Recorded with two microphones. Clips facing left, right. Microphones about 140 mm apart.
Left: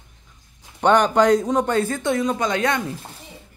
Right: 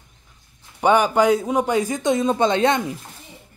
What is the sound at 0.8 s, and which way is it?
Speech, 5° right (ahead or behind).